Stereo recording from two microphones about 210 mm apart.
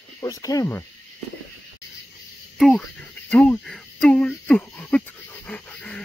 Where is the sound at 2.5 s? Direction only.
Centre (ahead or behind).